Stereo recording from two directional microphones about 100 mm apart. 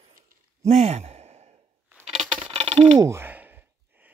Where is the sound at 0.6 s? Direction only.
90° right.